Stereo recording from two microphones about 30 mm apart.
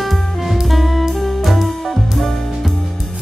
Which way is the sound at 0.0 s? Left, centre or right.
Centre.